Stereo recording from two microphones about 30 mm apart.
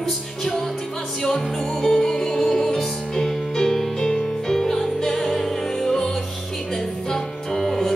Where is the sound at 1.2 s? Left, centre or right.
Centre.